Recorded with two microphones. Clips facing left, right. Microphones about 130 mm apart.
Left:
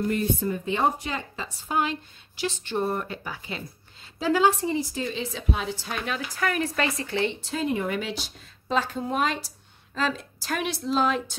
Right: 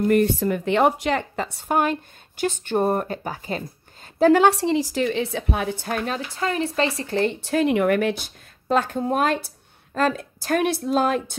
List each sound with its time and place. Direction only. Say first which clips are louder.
0.1 s speech: right 7 dB; 70° right (ahead or behind); by 6.7 s 25° right (ahead or behind)
7.0 s speech: right 4 dB; 40° right (ahead or behind)
7.3 s speech: right 7 dB; 65° right (ahead or behind); by 11.3 s 50° right (ahead or behind)